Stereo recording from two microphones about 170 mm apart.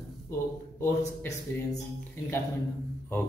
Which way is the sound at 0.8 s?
15° left (ahead or behind).